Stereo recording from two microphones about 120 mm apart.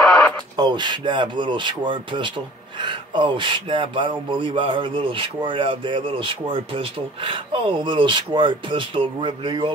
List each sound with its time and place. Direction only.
0.6 s speech: 40° right (ahead or behind)